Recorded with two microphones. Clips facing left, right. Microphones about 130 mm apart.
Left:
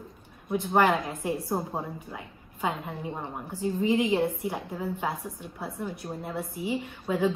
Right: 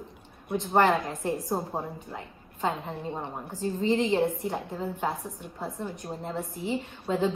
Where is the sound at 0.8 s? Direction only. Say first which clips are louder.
Right 1 dB; 10° left (ahead or behind).